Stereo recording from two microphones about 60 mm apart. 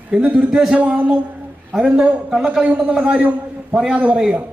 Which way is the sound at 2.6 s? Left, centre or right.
Right.